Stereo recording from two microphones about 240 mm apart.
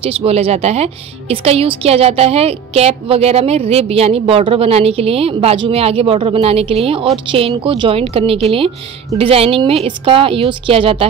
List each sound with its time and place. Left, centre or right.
0.0 s a woman's voice: right